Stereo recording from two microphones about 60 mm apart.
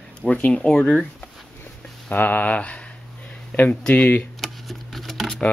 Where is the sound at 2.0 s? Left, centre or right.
Left.